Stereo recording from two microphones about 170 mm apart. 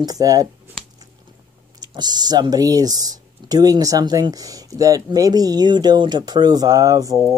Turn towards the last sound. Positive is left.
turn(degrees=-20)  # may be behind; listen again after turning